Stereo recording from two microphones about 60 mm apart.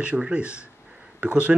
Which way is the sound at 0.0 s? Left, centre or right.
Right.